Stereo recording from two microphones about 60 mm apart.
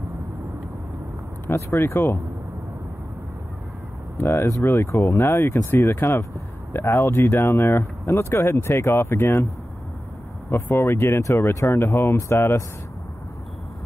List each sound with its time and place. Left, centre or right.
1.5 s speech: left
4.2 s speech: left
4.5 s speech: left
10.5 s speech: left
11.1 s speech: left
11.4 s speech: left